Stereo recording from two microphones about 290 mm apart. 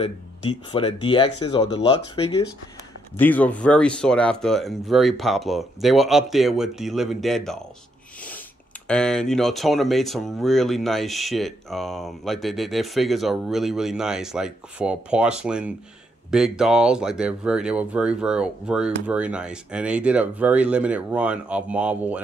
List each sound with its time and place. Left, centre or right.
0.0 s speech: centre
3.2 s speech: centre
8.8 s speech: centre